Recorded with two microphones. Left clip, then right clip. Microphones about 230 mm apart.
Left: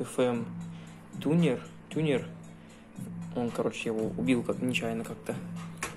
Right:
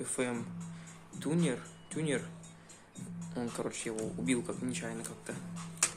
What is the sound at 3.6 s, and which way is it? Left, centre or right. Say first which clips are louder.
Speech: left 8 dB; centre.